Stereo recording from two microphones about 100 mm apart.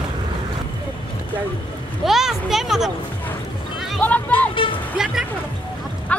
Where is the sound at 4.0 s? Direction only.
15° left (ahead or behind).